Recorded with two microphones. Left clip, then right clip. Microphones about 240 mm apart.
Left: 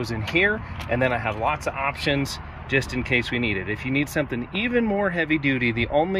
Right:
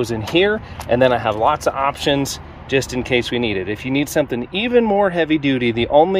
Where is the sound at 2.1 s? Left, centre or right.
Centre.